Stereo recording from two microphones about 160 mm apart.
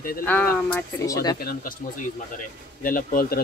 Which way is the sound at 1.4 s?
60° left (ahead or behind).